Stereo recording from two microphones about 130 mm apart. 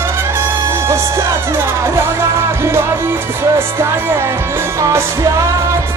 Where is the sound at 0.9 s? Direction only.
20° right (ahead or behind).